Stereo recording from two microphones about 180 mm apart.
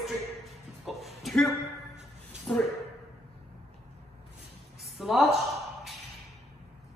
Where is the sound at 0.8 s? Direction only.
Centre (ahead or behind).